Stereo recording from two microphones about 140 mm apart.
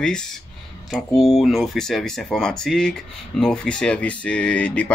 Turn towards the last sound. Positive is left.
turn(degrees=10)  # may be behind; listen again after turning